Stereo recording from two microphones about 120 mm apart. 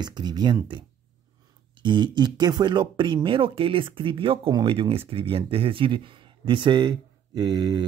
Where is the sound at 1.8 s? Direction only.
40° right (ahead or behind).